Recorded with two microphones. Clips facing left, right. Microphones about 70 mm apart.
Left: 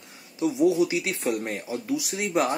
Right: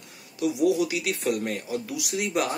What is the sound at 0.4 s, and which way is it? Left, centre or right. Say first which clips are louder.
Speech: left 2 dB; left.